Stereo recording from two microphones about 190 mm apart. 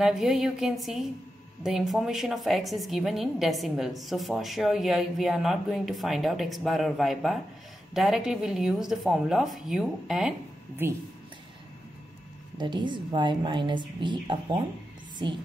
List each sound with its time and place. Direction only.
0.0 s a woman's voice: centre (ahead or behind)
12.5 s a woman's voice: 25° right (ahead or behind)